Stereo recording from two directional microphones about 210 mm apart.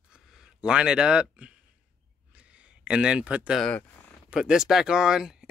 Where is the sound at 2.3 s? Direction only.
5° right (ahead or behind).